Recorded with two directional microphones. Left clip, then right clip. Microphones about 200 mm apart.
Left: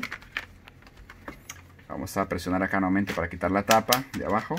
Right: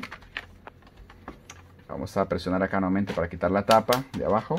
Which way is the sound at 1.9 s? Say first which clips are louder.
Right 2 dB; 20° right (ahead or behind).